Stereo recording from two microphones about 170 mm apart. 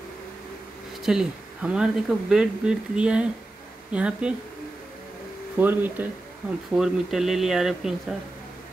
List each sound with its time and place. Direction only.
1.0 s speech: 5° right (ahead or behind)
5.6 s speech: 10° right (ahead or behind)